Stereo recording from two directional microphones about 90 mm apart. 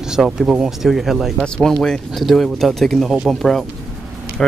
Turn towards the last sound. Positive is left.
turn(degrees=10)  # may be behind; listen again after turning